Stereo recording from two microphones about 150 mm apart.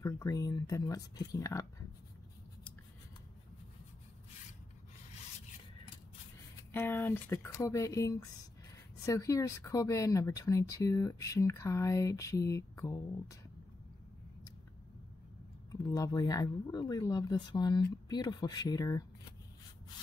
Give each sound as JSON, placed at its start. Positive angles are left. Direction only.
{"t": 0.0, "sound": "speech", "side_deg": 20}
{"t": 6.7, "sound": "speech", "side_deg": 15}
{"t": 15.7, "sound": "speech", "side_deg": 25}